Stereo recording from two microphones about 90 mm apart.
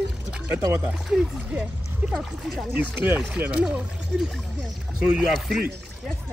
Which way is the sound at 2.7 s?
25° right (ahead or behind).